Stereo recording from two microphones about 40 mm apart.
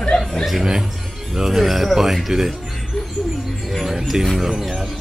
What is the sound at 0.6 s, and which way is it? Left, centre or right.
Music, centre.